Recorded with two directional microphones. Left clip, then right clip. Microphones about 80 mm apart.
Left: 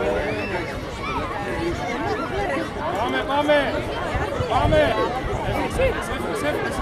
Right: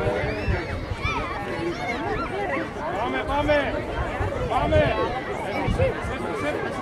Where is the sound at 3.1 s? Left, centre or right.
Left.